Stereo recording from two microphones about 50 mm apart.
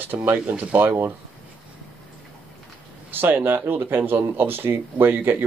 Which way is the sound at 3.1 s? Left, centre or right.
Right.